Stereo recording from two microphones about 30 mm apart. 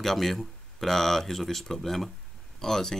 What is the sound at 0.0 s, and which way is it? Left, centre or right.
Speech, centre.